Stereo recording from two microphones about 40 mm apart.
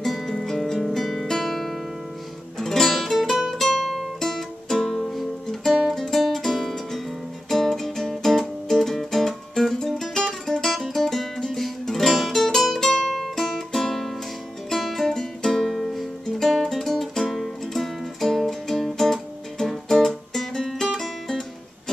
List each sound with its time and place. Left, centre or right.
0.0 s music: centre
1.2 s guitar: centre
2.6 s music: centre
15.7 s music: centre
16.3 s music: centre